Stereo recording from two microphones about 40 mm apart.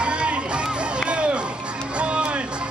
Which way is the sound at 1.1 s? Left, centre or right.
Right.